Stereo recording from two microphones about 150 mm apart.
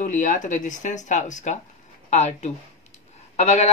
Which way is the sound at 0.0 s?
55° left (ahead or behind).